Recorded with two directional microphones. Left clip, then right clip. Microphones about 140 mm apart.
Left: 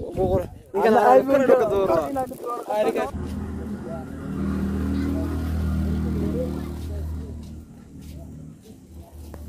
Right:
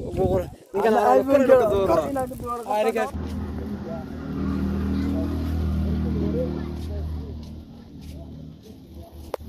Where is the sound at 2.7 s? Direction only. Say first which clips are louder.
Even; 60° left (ahead or behind).